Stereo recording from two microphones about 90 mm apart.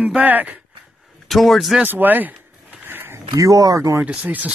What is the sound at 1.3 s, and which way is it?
Speech, centre (ahead or behind).